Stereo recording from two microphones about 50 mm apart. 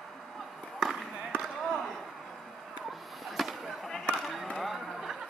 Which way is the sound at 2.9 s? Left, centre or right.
Centre.